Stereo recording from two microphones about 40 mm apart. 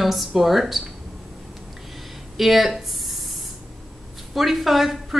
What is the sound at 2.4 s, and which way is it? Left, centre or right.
Speech, centre.